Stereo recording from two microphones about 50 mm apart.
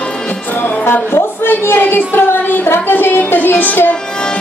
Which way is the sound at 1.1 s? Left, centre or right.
Left.